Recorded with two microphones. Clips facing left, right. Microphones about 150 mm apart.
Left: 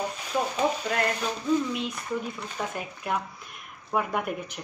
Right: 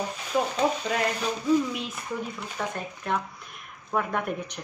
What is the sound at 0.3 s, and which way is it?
Speech, centre (ahead or behind).